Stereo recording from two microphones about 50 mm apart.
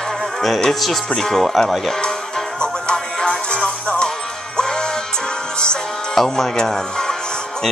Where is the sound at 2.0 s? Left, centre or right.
Centre.